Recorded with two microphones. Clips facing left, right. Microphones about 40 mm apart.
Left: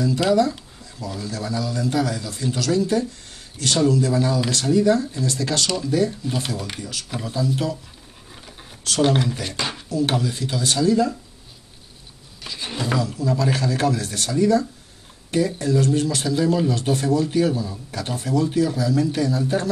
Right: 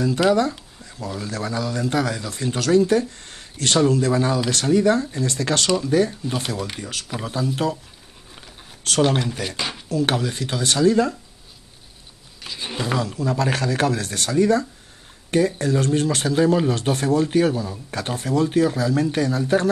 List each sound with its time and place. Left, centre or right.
0.3 s speech: right
6.8 s speech: right
9.0 s speech: centre
9.8 s speech: right
12.4 s speech: centre
13.0 s speech: right